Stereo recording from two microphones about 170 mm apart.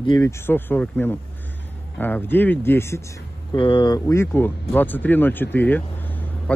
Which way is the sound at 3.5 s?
30° left (ahead or behind).